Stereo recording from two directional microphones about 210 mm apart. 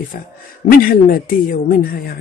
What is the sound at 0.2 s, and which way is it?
Speech, 45° left (ahead or behind).